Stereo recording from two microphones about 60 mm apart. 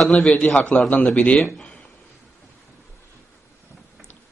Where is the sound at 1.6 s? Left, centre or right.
Centre.